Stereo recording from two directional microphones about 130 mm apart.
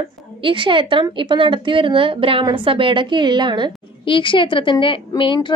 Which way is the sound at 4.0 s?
40° left (ahead or behind).